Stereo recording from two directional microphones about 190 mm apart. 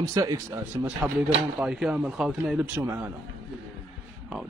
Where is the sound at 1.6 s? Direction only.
5° right (ahead or behind).